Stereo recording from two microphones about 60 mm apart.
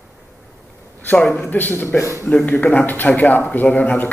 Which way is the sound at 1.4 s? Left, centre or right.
Left.